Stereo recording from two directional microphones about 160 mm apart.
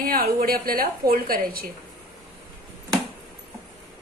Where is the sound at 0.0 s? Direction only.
65° right (ahead or behind).